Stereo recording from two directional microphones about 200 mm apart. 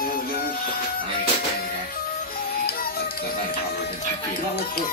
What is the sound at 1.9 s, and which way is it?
Music, 45° left (ahead or behind).